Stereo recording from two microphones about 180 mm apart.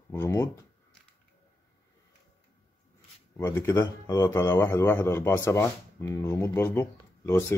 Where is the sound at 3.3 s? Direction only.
15° left (ahead or behind).